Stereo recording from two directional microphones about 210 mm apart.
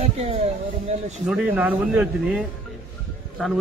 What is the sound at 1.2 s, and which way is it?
A man's voice, 5° right (ahead or behind).